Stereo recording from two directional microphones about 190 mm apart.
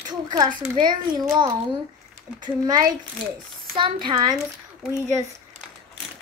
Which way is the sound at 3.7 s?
25° right (ahead or behind).